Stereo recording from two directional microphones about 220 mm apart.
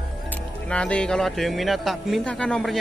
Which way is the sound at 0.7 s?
5° left (ahead or behind).